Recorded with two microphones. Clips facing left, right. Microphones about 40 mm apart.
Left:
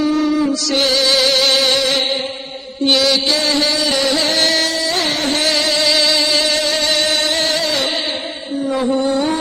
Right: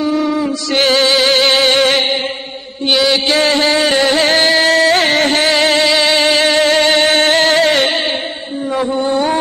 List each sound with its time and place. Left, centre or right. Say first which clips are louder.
0.0 s music: even; centre
0.7 s music: right 5 dB; right
2.9 s mantra: right 2 dB; centre
3.3 s music: right 4 dB; right
4.6 s carnatic music: right 8 dB; right
8.7 s a sound: right 1 dB; right
9.0 s a sound: right 2 dB; right